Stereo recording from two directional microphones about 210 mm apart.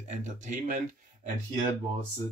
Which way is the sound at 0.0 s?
35° right (ahead or behind).